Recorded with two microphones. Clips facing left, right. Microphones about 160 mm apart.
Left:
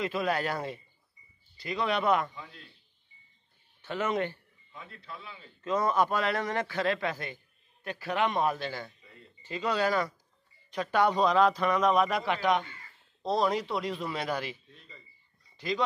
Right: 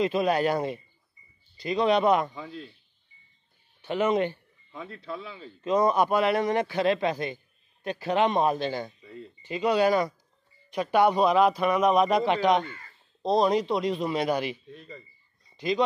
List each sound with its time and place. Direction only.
0.0 s speech: 20° right (ahead or behind)
3.8 s speech: 20° right (ahead or behind)
5.6 s a man's voice: 15° right (ahead or behind)
15.5 s a sound: 20° right (ahead or behind)